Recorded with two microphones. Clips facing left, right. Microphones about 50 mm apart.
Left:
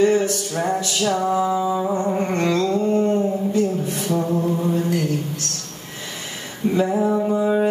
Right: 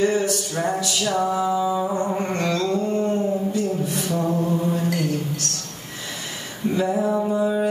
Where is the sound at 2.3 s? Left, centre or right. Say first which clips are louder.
Left 3 dB; left.